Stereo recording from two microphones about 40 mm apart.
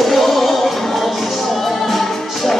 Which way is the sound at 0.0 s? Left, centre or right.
Centre.